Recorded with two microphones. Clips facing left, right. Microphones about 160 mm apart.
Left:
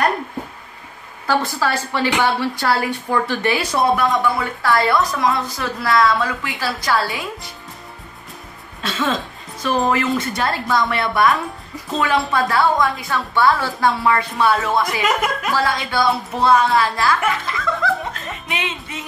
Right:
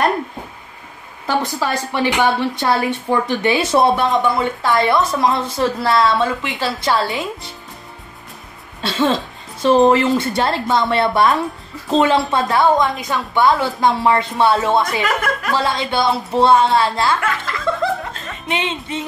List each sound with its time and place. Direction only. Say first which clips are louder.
1.2 s a woman's voice: even; 20° right (ahead or behind)
8.8 s a woman's voice: right 4 dB; 30° right (ahead or behind)
15.0 s speech: even; 20° left (ahead or behind)
15.5 s a woman's voice: right 3 dB; 25° right (ahead or behind)
18.5 s a woman's voice: right 6 dB; 25° right (ahead or behind)